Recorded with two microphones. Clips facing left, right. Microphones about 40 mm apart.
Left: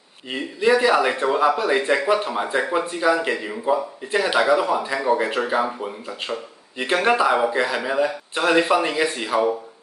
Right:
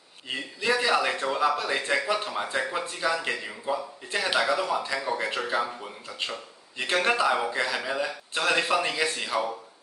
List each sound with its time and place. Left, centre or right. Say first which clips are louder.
0.3 s speech: left 8 dB; centre